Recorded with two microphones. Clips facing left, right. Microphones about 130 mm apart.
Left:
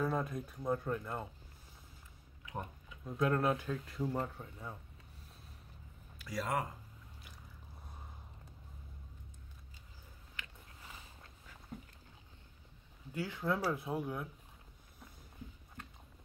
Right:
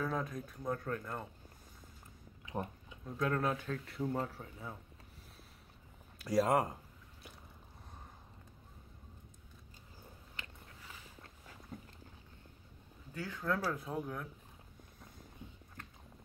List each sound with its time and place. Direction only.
0.0 s speech: 5° left (ahead or behind)
2.4 s a sound: 30° right (ahead or behind)
3.2 s speech: 5° left (ahead or behind)
6.2 s speech: 40° right (ahead or behind)
13.1 s speech: 10° left (ahead or behind)